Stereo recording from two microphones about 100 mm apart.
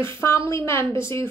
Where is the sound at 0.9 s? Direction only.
55° right (ahead or behind).